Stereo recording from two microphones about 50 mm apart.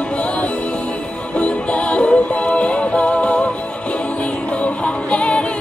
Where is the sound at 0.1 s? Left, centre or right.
Left.